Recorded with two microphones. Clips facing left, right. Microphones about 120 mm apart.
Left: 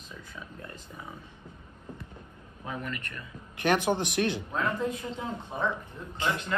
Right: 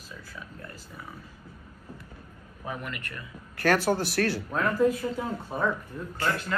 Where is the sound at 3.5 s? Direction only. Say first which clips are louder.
Right 2 dB; 20° left (ahead or behind).